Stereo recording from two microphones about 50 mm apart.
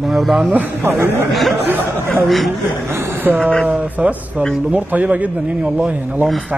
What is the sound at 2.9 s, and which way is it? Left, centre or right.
A man's voice, right.